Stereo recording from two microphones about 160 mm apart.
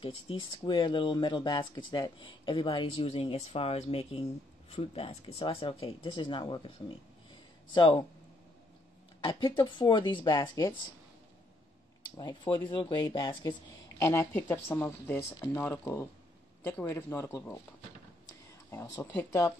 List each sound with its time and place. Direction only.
0.0 s speech: 35° left (ahead or behind)
7.7 s speech: 30° left (ahead or behind)
9.2 s speech: 30° left (ahead or behind)
12.0 s speech: 25° left (ahead or behind)
18.7 s speech: 15° left (ahead or behind)